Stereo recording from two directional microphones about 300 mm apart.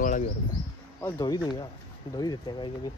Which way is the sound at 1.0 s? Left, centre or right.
Centre.